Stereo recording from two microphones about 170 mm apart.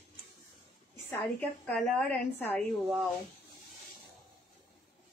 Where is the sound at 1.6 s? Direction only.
5° left (ahead or behind).